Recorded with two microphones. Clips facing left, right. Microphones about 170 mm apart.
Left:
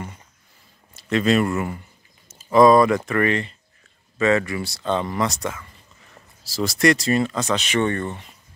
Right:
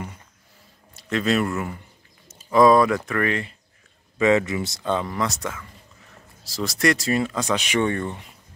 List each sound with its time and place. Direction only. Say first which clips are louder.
0.9 s speech: left 3 dB; centre (ahead or behind)
2.2 s a sound: left 2 dB; centre (ahead or behind)
3.1 s speech: left 3 dB; centre (ahead or behind)
4.2 s speech: right 1 dB; 15° right (ahead or behind)
4.9 s speech: left 3 dB; centre (ahead or behind)